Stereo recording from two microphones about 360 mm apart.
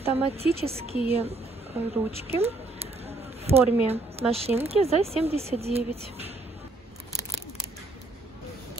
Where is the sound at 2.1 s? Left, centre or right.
Centre.